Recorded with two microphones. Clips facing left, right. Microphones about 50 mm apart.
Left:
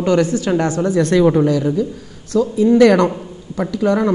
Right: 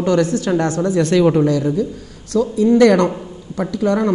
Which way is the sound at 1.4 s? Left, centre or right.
Centre.